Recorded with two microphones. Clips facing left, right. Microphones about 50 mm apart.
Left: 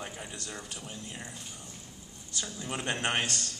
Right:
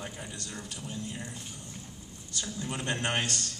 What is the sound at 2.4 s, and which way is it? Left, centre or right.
A man's voice, left.